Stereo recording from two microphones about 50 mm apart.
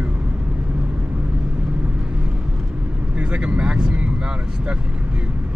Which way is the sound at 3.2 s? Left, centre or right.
Right.